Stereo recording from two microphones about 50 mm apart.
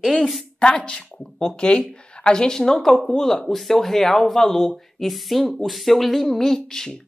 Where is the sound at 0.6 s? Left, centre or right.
Centre.